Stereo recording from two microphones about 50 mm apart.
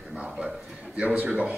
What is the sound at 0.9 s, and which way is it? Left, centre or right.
Speech, right.